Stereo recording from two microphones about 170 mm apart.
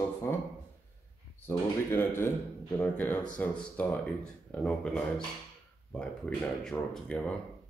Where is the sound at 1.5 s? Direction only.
15° left (ahead or behind).